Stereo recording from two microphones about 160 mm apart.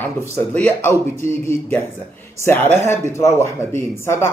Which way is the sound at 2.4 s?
15° left (ahead or behind).